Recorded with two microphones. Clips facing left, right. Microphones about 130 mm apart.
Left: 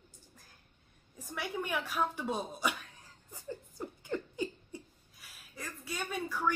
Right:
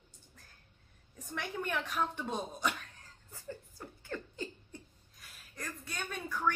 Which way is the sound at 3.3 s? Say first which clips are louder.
Left 2 dB; 15° left (ahead or behind).